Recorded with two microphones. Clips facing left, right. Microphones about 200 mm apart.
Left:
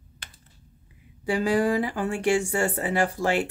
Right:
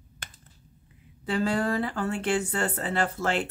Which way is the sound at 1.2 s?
15° left (ahead or behind).